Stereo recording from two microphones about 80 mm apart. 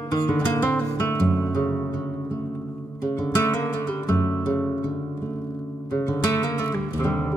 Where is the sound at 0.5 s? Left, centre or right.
Left.